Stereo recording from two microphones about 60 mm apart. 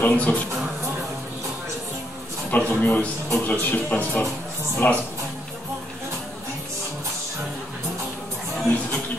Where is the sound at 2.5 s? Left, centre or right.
Left.